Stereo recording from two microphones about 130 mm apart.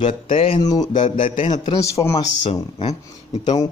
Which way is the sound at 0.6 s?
30° left (ahead or behind).